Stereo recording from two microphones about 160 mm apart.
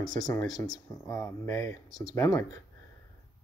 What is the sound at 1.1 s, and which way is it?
Speech, 20° left (ahead or behind).